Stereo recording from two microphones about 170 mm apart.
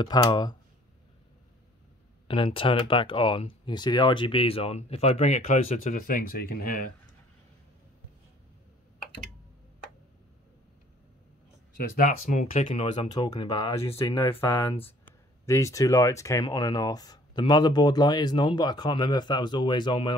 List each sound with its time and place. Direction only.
0.0 s speech: 25° left (ahead or behind)
2.2 s speech: 30° left (ahead or behind); by 6.9 s 55° left (ahead or behind)
11.7 s speech: 50° left (ahead or behind)
13.1 s speech: 25° left (ahead or behind)
13.8 s speech: 15° left (ahead or behind)